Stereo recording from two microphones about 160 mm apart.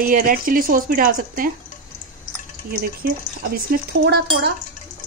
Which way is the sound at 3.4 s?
80° right.